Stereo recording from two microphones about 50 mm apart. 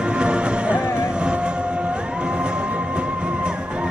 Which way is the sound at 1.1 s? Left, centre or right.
Centre.